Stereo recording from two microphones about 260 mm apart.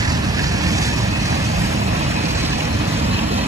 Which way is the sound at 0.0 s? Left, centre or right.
Centre.